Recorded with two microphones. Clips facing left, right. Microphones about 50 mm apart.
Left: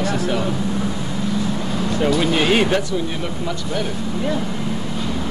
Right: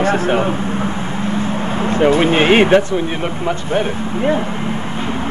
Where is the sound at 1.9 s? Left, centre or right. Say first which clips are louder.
Right 6 dB; right.